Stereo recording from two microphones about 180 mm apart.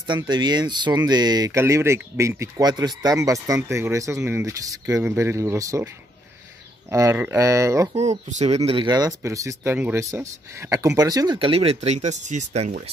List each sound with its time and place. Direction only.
0.0 s speech: 25° right (ahead or behind)
6.9 s speech: 15° right (ahead or behind)
7.9 s speech: 40° right (ahead or behind)
8.6 s speech: 25° right (ahead or behind)